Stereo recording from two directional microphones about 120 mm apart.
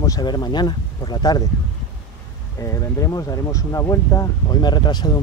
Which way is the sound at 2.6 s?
25° left (ahead or behind).